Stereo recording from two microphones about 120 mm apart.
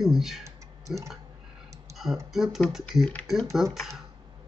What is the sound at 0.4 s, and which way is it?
Clicking, 25° right (ahead or behind).